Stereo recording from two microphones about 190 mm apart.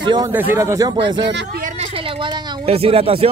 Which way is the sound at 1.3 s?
70° right (ahead or behind).